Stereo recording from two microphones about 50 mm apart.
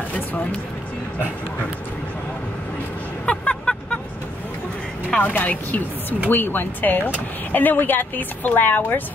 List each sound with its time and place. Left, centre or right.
0.1 s a sound: left
3.3 s vehicle: left
5.2 s speech: left